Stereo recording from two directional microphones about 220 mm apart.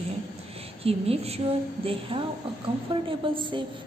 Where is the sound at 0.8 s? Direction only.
25° right (ahead or behind).